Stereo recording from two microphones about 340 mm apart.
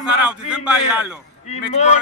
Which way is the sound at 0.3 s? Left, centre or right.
Centre.